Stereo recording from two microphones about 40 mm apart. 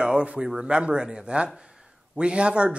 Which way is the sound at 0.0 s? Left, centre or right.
Right.